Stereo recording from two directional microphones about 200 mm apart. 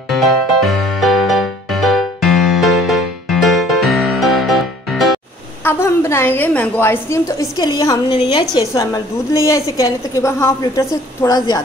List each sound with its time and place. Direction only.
0.1 s music: centre (ahead or behind)
5.6 s a woman's voice: 10° left (ahead or behind)